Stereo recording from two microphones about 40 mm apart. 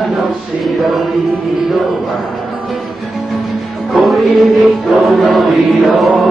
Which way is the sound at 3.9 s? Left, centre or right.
Centre.